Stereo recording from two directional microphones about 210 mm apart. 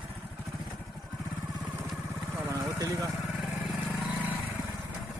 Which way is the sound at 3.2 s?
Centre (ahead or behind).